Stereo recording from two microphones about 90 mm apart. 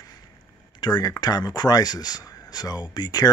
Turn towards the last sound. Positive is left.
turn(degrees=50)  # may be behind; listen again after turning